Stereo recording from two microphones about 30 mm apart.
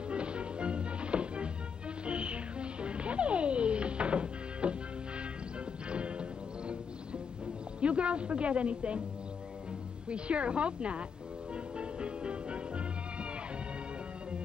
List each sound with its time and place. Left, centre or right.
0.1 s music: right
5.9 s music: right
7.8 s a woman's voice: right
10.0 s a woman's voice: right
11.5 s music: right